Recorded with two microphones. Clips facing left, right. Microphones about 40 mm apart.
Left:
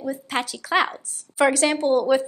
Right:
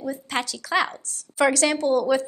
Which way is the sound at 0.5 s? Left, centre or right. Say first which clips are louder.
Left 3 dB; left.